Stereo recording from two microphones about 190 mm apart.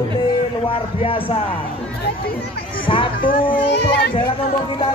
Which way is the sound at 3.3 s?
65° left (ahead or behind).